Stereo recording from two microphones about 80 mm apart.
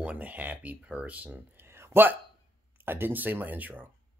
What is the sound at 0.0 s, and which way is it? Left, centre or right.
Speech, centre.